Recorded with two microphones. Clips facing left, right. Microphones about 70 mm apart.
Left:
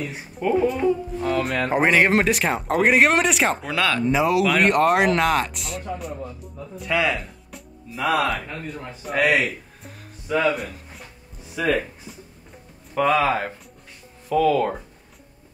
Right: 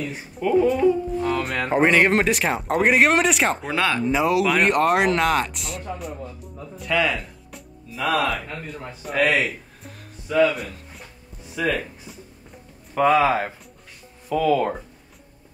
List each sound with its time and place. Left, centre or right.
0.0 s speech: centre
0.4 s speech: centre
1.1 s speech: centre
3.7 s speech: right
4.0 s speech: centre
9.0 s music: centre
10.5 s speech: centre